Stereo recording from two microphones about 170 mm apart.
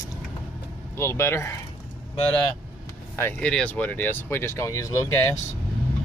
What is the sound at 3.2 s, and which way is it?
Speech, 10° left (ahead or behind).